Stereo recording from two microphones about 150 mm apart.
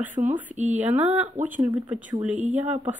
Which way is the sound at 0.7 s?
10° right (ahead or behind).